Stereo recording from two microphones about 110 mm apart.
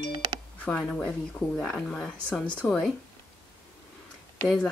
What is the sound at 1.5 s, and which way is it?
Speech, 5° left (ahead or behind).